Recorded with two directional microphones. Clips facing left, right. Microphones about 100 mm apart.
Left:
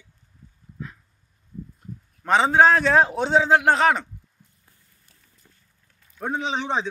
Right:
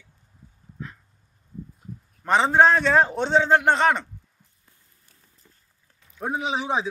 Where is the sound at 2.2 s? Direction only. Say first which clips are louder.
Left 1 dB; centre (ahead or behind).